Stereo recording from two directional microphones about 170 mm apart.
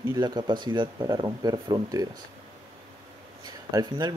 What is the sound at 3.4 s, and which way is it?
Speech, 25° right (ahead or behind).